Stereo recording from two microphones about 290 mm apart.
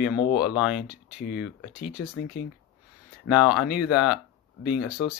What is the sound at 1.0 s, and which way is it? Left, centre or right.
Speech, left.